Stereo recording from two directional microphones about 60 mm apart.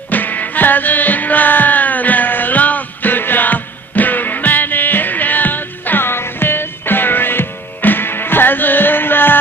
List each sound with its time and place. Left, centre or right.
0.1 s music: left